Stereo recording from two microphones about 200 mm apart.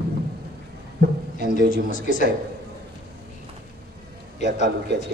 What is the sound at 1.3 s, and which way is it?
Speech, 55° right (ahead or behind).